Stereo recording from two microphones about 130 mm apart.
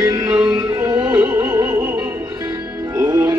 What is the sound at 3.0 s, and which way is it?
Music, 30° right (ahead or behind).